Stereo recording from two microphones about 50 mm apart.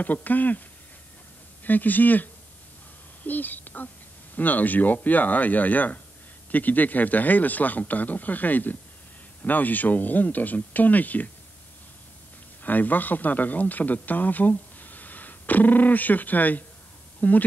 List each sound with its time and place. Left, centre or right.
0.0 s speech: left
1.6 s speech: left
3.3 s speech: left
12.6 s speech: left